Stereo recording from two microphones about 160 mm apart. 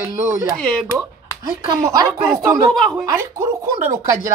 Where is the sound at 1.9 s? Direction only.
25° right (ahead or behind).